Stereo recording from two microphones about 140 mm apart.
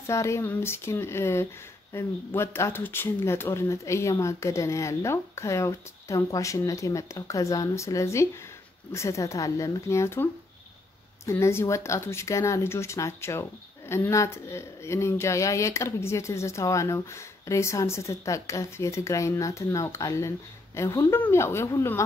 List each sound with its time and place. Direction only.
0.0 s a woman's voice: 20° left (ahead or behind)